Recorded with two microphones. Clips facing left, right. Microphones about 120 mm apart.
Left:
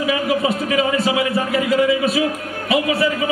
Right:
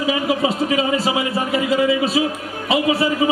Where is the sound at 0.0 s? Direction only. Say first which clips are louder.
Even; 25° right (ahead or behind).